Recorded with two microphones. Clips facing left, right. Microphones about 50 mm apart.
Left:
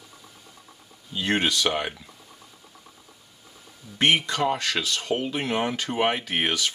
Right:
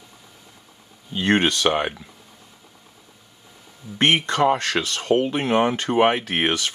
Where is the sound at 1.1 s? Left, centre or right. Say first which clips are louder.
Right 5 dB; right.